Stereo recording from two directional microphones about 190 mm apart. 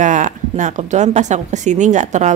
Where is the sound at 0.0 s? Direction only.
40° right (ahead or behind).